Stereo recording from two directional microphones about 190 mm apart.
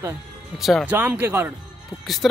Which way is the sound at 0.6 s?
Centre (ahead or behind).